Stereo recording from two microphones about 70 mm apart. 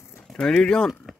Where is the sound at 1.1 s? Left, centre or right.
Centre.